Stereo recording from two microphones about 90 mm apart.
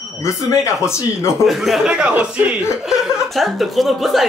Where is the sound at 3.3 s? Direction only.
Centre (ahead or behind).